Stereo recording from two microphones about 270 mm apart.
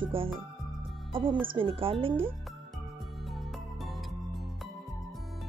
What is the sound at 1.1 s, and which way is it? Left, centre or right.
Speech, centre.